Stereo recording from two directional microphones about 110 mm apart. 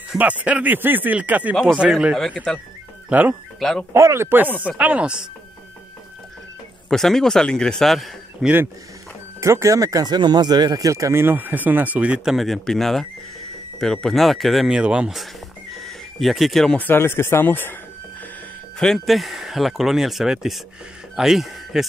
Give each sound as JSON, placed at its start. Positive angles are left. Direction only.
{"t": 0.2, "sound": "speech", "side_deg": -15}
{"t": 2.1, "sound": "speech", "side_deg": 5}
{"t": 3.1, "sound": "speech", "side_deg": -15}
{"t": 3.5, "sound": "speech", "side_deg": 5}
{"t": 3.9, "sound": "speech", "side_deg": -25}
{"t": 6.9, "sound": "speech", "side_deg": 5}
{"t": 9.4, "sound": "speech", "side_deg": -25}
{"t": 16.8, "sound": "speech", "side_deg": 20}
{"t": 18.8, "sound": "speech", "side_deg": 5}